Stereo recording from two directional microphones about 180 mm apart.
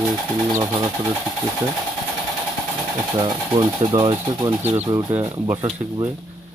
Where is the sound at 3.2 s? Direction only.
25° right (ahead or behind).